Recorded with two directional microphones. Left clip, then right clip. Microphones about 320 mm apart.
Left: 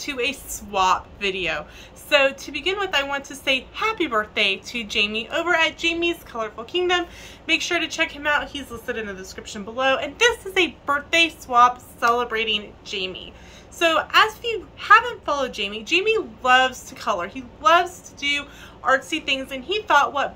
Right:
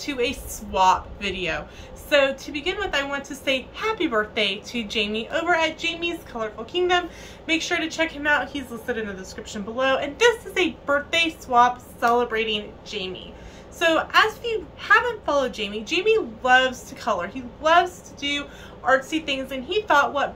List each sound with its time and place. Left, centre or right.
0.0 s a woman's voice: centre